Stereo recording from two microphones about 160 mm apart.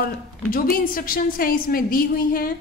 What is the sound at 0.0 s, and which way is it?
A woman's voice, 70° left (ahead or behind).